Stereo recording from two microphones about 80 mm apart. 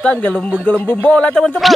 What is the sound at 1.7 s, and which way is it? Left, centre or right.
Speech, centre.